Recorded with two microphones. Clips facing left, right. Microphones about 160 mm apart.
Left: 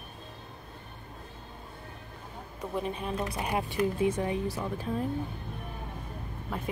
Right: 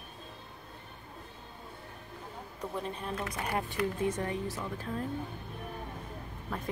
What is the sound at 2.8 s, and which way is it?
Speech, 15° left (ahead or behind).